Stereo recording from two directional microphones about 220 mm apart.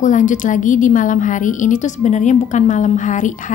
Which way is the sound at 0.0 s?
35° left (ahead or behind).